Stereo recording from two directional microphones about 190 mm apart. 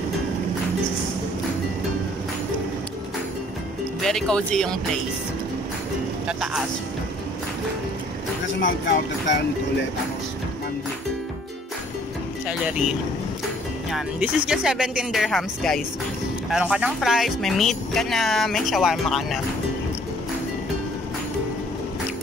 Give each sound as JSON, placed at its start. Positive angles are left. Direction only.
{"t": 4.0, "sound": "speech", "side_deg": 5}
{"t": 6.2, "sound": "speech", "side_deg": -5}
{"t": 8.5, "sound": "speech", "side_deg": 70}
{"t": 12.4, "sound": "speech", "side_deg": -5}